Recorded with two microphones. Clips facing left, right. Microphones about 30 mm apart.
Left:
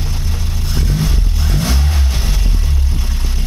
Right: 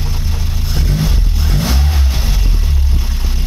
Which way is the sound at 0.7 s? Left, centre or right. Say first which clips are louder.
Right 1 dB; centre.